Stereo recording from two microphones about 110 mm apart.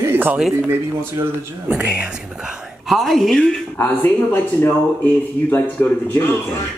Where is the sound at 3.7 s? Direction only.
20° left (ahead or behind).